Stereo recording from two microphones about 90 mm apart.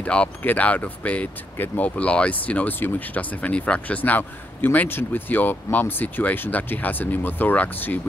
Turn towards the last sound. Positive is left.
turn(degrees=20)  # may be behind; listen again after turning